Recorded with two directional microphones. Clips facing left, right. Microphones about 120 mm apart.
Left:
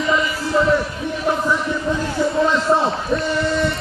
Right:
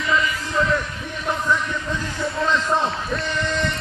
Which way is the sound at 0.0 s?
25° left (ahead or behind).